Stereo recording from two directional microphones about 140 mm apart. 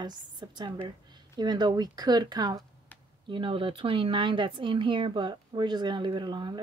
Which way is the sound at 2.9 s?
10° left (ahead or behind).